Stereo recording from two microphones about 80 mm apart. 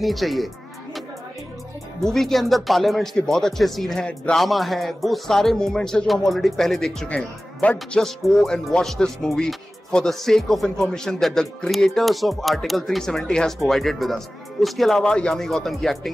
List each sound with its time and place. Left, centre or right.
0.0 s speech: centre
2.0 s speech: centre
7.6 s a man's voice: centre